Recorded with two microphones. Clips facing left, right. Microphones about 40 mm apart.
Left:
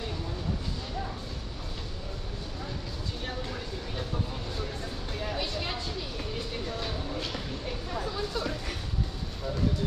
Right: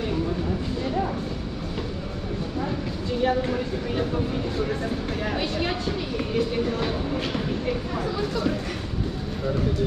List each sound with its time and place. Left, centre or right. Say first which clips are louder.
3.2 s speech: right 15 dB; right